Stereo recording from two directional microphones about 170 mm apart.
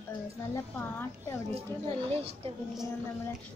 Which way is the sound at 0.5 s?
15° left (ahead or behind).